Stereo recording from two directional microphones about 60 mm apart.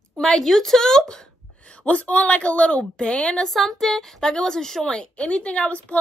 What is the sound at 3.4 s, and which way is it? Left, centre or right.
A woman's voice, centre.